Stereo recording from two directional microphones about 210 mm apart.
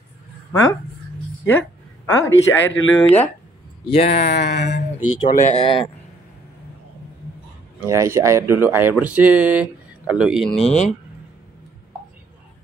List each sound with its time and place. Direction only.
0.5 s speech: 15° left (ahead or behind)
1.4 s a sound: 10° left (ahead or behind)
2.2 s speech: 65° left (ahead or behind)
3.0 s speech: 10° left (ahead or behind)
3.9 s speech: 30° left (ahead or behind)
4.3 s speech: 50° left (ahead or behind)
5.3 s speech: 35° left (ahead or behind)
7.8 s speech: 15° right (ahead or behind)
10.6 s speech: 30° left (ahead or behind)